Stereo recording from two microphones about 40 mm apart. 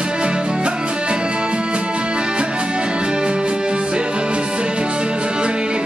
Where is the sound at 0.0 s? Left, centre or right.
Right.